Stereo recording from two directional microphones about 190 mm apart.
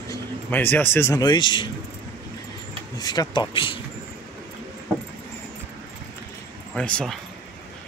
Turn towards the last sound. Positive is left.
turn(degrees=5)  # may be behind; listen again after turning